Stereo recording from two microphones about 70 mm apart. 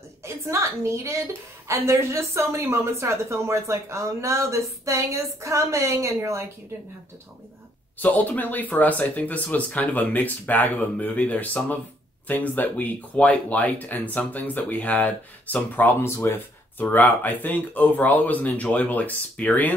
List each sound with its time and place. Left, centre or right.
0.2 s a woman's voice: right
8.0 s speech: left
16.8 s speech: left